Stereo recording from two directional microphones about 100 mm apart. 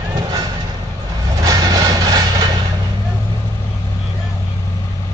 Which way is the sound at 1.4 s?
40° right (ahead or behind).